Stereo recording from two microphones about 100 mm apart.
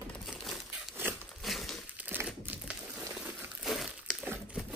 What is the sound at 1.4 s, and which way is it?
Crumpling, centre (ahead or behind).